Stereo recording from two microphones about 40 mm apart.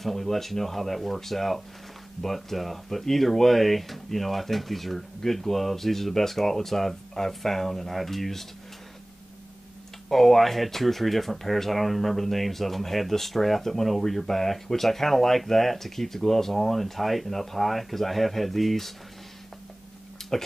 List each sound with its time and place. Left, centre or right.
0.0 s speech: centre
10.0 s speech: centre
20.3 s speech: centre